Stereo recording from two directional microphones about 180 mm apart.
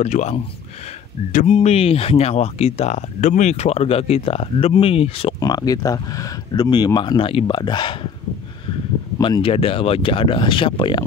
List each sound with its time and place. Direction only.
0.0 s speech: 40° left (ahead or behind)
5.4 s speech: 20° left (ahead or behind)
9.2 s speech: 30° left (ahead or behind)